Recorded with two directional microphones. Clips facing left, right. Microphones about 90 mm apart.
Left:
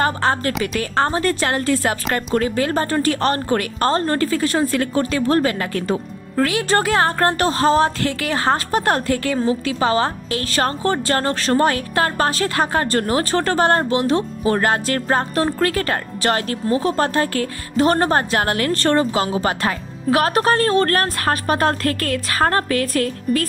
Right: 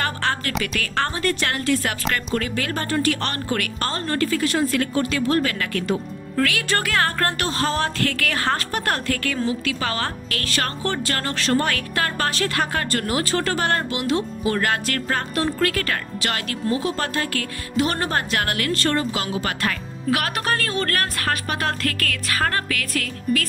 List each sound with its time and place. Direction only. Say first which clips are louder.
0.0 s a woman's voice: left 6 dB; 30° left (ahead or behind)